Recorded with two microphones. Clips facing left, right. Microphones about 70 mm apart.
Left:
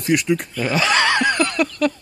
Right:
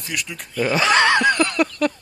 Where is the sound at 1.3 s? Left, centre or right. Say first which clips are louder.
Right 1 dB; right.